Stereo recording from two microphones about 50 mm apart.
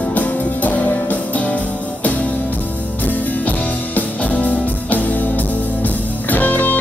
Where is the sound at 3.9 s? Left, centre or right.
Left.